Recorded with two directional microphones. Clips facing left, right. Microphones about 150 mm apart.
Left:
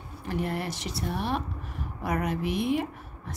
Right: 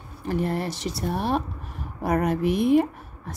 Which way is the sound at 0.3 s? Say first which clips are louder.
Right 5 dB; 35° right (ahead or behind).